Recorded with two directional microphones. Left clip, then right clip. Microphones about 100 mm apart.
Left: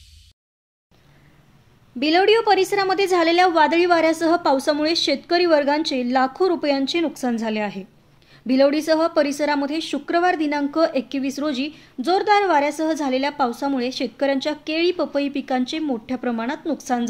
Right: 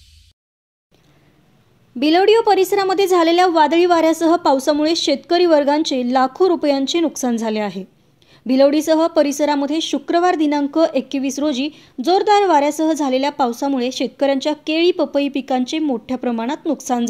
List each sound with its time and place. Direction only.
2.0 s a woman's voice: 35° right (ahead or behind)
8.3 s a woman's voice: 35° right (ahead or behind)